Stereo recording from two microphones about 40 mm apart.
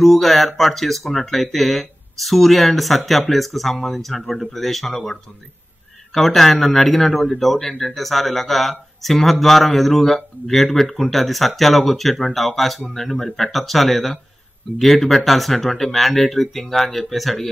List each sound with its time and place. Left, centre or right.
0.0 s speech: centre